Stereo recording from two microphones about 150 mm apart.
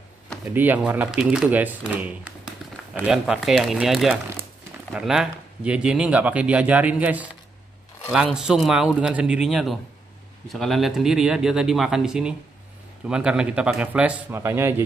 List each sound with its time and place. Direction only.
0.5 s speech: 10° right (ahead or behind)
2.6 s a sound: centre (ahead or behind)
3.1 s speech: 5° right (ahead or behind)